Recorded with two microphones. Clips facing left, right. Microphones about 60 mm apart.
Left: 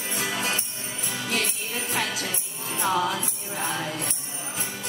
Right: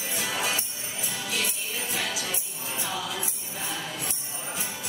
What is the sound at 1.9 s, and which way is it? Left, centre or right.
Jingle bell, left.